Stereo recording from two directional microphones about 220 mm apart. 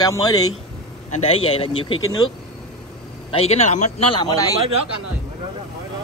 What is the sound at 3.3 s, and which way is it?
Speech, 30° left (ahead or behind).